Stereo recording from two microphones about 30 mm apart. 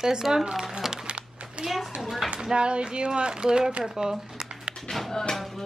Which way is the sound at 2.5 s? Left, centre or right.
Right.